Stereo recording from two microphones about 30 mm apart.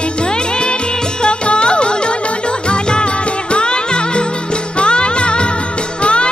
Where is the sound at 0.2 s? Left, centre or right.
Left.